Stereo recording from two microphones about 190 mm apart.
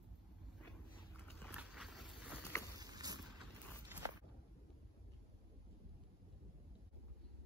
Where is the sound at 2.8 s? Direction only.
20° right (ahead or behind).